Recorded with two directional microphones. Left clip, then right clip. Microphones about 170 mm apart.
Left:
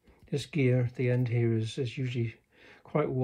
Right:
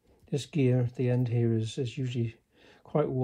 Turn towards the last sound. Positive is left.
turn(degrees=0)  # may be behind; listen again after turning